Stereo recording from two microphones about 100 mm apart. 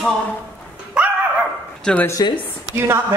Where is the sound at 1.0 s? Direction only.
10° right (ahead or behind).